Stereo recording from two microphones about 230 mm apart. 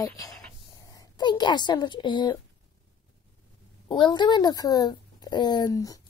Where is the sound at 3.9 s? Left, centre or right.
Centre.